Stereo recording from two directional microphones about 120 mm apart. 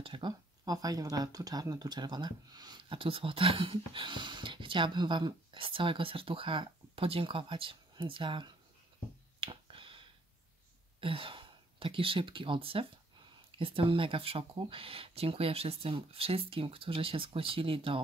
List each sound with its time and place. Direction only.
0.0 s speech: 45° right (ahead or behind)
0.7 s speech: 30° right (ahead or behind)
2.8 s speech: 50° right (ahead or behind)
9.4 s finger snapping: 50° right (ahead or behind)
11.0 s speech: 50° right (ahead or behind)